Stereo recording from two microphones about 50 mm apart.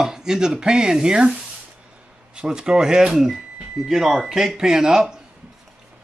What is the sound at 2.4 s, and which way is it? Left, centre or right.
Speech, centre.